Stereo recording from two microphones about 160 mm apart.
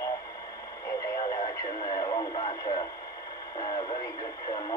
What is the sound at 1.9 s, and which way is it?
Radio, 30° left (ahead or behind).